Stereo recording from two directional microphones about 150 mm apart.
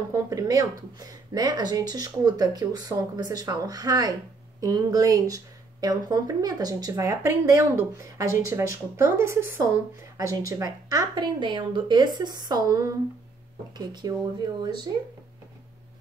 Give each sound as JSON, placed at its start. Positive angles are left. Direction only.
{"t": 0.1, "sound": "speech", "side_deg": -25}